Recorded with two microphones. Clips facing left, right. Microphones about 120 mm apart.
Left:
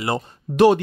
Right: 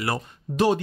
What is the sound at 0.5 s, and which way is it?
Speech, 70° left (ahead or behind).